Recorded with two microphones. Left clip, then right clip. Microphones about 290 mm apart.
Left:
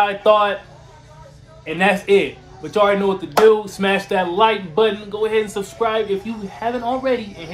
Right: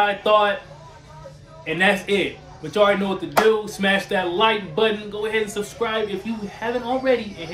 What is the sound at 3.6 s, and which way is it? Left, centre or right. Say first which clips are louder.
Speech: left 1 dB; centre.